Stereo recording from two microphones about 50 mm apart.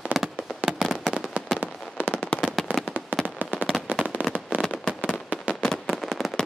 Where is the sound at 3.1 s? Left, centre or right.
Right.